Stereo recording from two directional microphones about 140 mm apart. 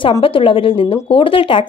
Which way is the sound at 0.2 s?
40° left (ahead or behind).